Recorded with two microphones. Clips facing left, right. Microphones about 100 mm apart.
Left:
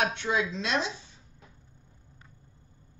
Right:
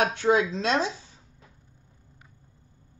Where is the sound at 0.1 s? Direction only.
40° right (ahead or behind).